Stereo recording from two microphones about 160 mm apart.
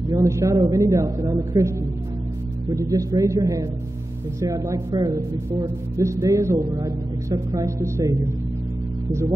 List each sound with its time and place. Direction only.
0.1 s a man's voice: 20° right (ahead or behind)